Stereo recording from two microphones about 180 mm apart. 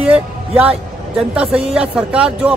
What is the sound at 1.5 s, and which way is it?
Speech, 35° right (ahead or behind).